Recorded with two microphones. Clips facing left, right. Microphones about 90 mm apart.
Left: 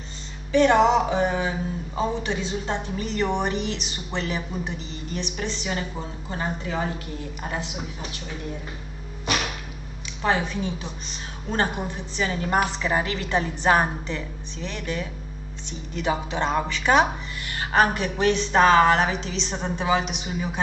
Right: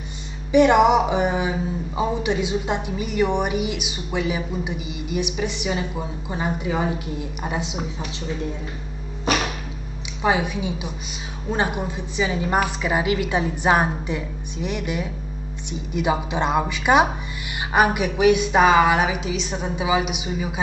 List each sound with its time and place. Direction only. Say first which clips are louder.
0.5 s a woman's voice: right 3 dB; 15° right (ahead or behind)
10.2 s a woman's voice: right 3 dB; 15° right (ahead or behind)